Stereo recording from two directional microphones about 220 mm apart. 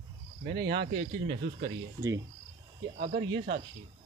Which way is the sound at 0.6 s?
50° right (ahead or behind).